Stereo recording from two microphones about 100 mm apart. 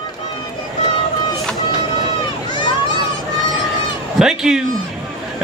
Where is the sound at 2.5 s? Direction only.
45° left (ahead or behind).